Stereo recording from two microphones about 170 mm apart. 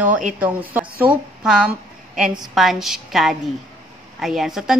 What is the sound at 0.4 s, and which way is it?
A woman's voice, 10° right (ahead or behind).